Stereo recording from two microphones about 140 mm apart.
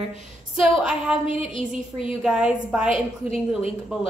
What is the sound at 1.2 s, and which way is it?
Speech, 40° left (ahead or behind).